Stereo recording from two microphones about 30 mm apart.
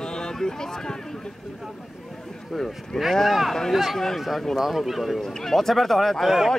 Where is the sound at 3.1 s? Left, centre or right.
Centre.